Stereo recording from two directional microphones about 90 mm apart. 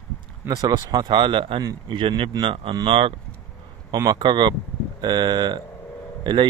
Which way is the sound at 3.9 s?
50° right (ahead or behind).